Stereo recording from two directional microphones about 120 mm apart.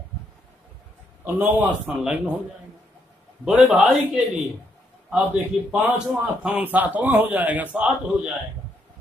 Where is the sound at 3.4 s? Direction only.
10° right (ahead or behind).